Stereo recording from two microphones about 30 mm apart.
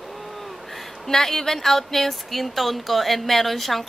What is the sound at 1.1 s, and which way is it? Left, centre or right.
Speech, centre.